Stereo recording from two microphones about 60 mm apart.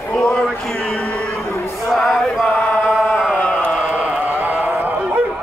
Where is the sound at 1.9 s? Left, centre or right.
Centre.